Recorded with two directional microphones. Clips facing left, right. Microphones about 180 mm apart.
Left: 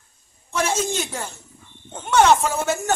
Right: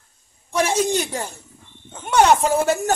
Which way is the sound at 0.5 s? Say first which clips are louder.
Right 4 dB; 15° right (ahead or behind).